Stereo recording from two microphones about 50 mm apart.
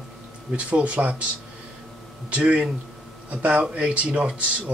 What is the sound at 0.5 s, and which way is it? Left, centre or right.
Speech, right.